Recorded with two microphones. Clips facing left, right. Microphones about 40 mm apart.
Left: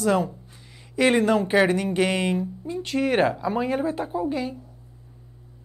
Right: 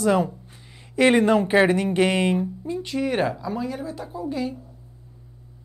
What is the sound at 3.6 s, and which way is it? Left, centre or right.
Speech, left.